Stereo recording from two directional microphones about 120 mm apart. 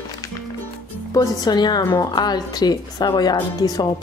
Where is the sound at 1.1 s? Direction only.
35° left (ahead or behind).